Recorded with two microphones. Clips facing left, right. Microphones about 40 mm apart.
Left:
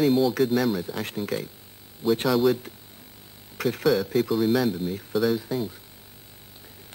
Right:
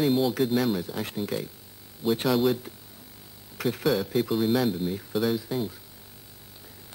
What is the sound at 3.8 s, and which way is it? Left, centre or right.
Speech, centre.